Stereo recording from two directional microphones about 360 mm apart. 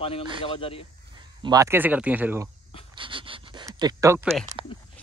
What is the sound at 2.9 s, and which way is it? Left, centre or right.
Pant, centre.